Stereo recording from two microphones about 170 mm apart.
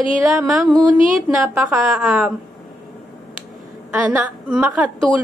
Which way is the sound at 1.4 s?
15° right (ahead or behind).